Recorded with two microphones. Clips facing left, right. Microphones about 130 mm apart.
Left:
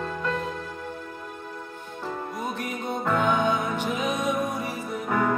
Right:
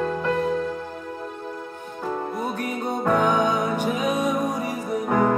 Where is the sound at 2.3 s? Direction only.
40° right (ahead or behind).